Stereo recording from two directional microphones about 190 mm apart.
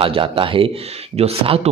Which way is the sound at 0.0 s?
25° right (ahead or behind).